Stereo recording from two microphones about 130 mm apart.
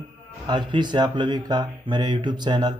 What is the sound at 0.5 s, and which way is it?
Speech, 35° right (ahead or behind).